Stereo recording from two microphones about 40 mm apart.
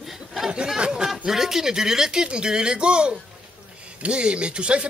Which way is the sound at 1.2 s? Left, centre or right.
Centre.